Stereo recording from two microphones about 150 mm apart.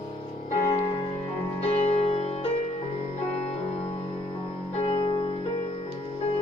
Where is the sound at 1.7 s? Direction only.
45° left (ahead or behind).